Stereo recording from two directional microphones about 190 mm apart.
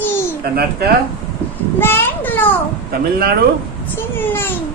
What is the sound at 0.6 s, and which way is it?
Speech, 55° right (ahead or behind).